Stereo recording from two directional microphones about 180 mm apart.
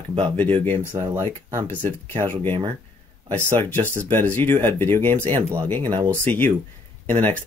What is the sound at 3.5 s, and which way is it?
Speech, 10° left (ahead or behind).